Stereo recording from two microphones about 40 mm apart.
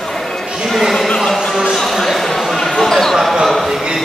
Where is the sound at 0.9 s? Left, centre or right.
Centre.